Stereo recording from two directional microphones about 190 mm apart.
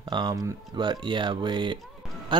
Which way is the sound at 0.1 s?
20° right (ahead or behind).